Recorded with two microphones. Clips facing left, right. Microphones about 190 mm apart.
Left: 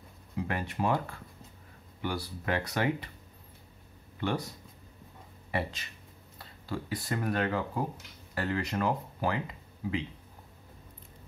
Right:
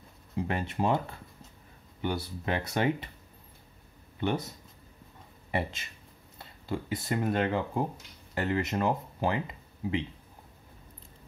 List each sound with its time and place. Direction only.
0.4 s speech: 25° right (ahead or behind)
5.5 s speech: 25° right (ahead or behind)